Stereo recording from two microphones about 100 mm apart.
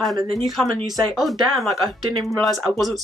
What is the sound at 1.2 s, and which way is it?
Speech, centre (ahead or behind).